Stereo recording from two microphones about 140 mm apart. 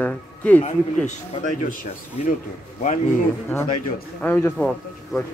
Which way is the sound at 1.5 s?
65° left (ahead or behind).